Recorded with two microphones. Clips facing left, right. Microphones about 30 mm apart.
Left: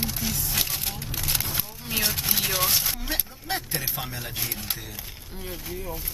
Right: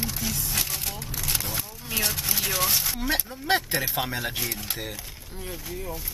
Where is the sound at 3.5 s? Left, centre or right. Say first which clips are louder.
Right 7 dB; right.